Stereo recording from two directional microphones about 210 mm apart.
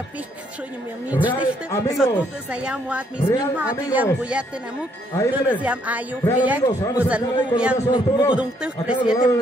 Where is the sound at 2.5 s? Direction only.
5° right (ahead or behind).